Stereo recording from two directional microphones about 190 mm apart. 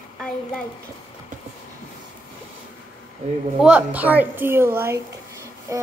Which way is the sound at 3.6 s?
5° right (ahead or behind).